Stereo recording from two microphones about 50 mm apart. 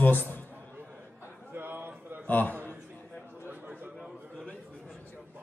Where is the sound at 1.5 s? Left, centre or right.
Right.